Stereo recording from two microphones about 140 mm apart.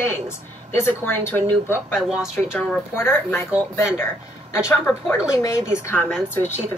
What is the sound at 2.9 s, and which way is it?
Speech, 15° left (ahead or behind).